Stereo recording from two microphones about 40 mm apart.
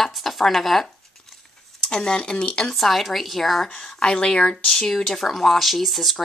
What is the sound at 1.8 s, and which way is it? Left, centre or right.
Speech, left.